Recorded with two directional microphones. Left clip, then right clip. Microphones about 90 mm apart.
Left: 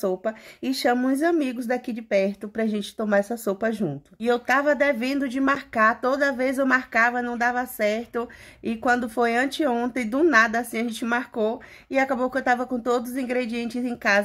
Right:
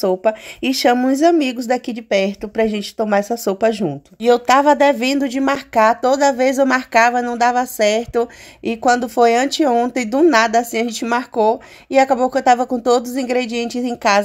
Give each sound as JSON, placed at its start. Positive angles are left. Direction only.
{"t": 0.1, "sound": "speech", "side_deg": -50}
{"t": 2.4, "sound": "speech", "side_deg": -35}
{"t": 4.2, "sound": "speech", "side_deg": -55}